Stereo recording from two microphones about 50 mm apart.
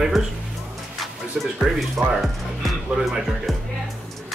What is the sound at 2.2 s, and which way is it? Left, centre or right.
Speech, centre.